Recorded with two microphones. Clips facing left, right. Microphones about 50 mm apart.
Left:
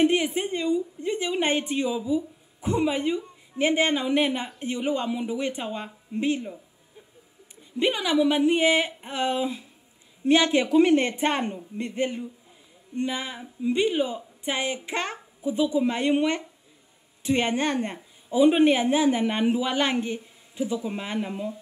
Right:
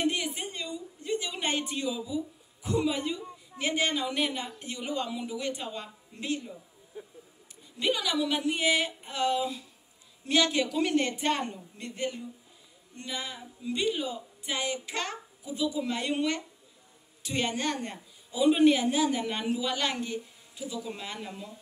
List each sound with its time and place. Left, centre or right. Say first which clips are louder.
0.0 s a woman's voice: left 8 dB; left
7.8 s a woman's voice: left 6 dB; left